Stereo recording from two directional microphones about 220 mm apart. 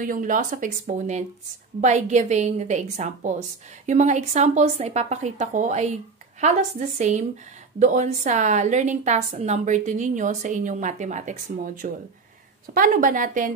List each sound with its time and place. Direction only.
0.0 s a woman's voice: 35° right (ahead or behind)